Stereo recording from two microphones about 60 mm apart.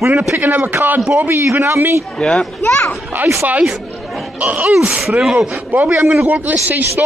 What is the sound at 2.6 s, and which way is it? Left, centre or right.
Speech, left.